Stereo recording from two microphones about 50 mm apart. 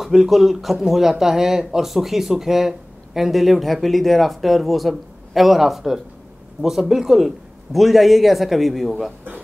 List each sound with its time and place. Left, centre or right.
0.0 s speech: centre